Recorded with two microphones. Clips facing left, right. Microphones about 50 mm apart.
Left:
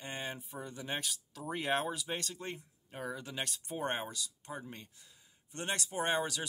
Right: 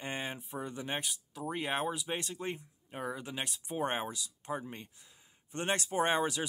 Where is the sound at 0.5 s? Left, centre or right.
Right.